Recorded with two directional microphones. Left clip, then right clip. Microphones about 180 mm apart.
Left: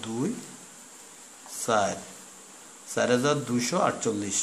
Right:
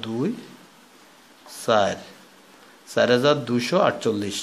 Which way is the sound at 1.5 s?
25° right (ahead or behind).